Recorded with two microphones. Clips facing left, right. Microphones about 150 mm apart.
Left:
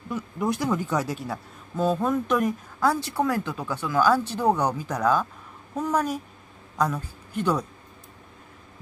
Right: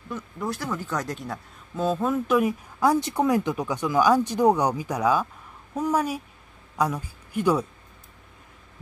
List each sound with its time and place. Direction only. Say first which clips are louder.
0.1 s speech: left 4 dB; 15° left (ahead or behind); by 2.5 s 5° right (ahead or behind)
2.8 s speech: right 2 dB; 20° right (ahead or behind)